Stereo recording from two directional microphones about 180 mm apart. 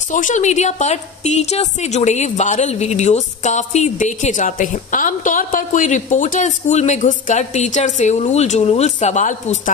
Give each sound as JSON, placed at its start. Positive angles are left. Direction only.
{"t": 0.1, "sound": "a woman's voice", "side_deg": 45}